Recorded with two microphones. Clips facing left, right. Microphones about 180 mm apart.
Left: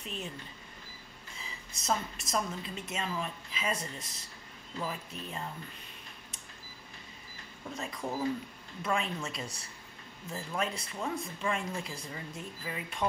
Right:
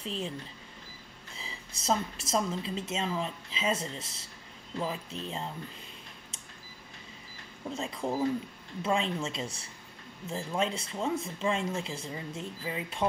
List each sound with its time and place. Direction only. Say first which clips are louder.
0.0 s a woman's voice: right 5 dB; 30° right (ahead or behind)
1.4 s a woman's voice: right 4 dB; 30° right (ahead or behind)
7.7 s a woman's voice: right 4 dB; 25° right (ahead or behind)